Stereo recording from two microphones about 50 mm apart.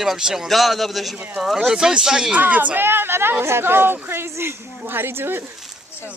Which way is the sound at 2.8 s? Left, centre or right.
Right.